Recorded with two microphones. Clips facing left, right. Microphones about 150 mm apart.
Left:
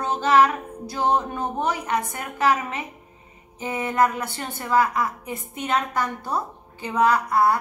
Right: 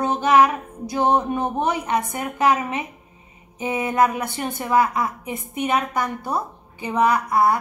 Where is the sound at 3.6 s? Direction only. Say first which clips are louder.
Right 2 dB; 15° right (ahead or behind).